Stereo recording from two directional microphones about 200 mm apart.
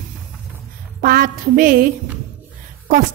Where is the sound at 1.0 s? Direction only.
45° right (ahead or behind).